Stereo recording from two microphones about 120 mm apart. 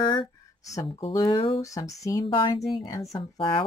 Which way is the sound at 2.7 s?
30° left (ahead or behind).